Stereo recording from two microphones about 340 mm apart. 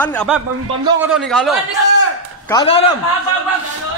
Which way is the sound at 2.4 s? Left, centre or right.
Centre.